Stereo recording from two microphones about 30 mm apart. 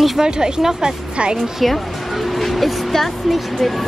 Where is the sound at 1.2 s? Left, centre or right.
Right.